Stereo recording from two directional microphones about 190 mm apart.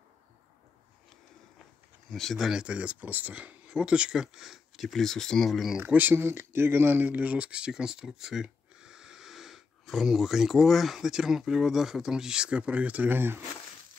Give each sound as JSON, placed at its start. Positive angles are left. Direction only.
{"t": 2.0, "sound": "speech", "side_deg": 0}